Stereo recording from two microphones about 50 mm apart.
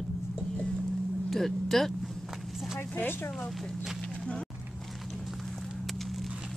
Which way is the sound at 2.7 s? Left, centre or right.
Left.